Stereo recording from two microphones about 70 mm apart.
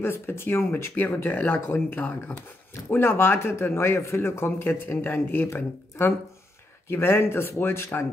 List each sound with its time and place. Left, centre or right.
0.0 s speech: left
2.0 s speech: centre
2.9 s speech: left